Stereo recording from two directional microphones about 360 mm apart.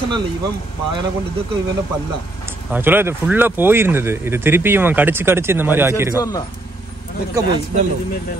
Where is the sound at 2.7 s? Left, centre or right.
Centre.